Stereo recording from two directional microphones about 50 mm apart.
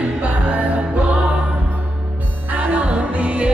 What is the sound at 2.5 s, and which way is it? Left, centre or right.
Music, right.